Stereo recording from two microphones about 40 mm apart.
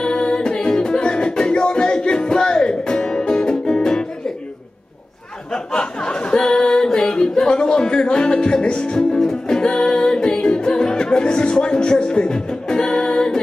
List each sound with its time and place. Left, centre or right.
0.0 s music: left
5.5 s a sound: centre
9.2 s music: centre